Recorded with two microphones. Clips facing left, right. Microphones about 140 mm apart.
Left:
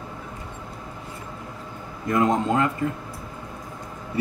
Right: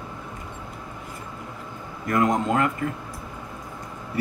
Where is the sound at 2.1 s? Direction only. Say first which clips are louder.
Left 1 dB; 30° left (ahead or behind).